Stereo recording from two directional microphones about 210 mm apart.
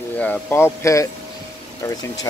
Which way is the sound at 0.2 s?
10° left (ahead or behind).